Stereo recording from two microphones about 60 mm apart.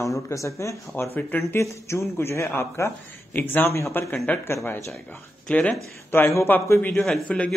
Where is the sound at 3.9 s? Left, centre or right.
Left.